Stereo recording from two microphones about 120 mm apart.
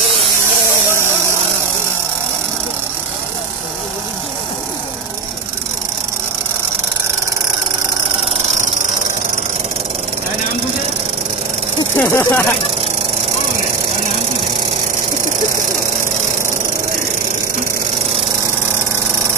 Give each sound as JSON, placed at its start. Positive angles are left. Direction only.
{"t": 12.0, "sound": "speech", "side_deg": 20}